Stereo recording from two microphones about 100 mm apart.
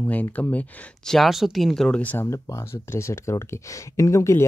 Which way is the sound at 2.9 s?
30° left (ahead or behind).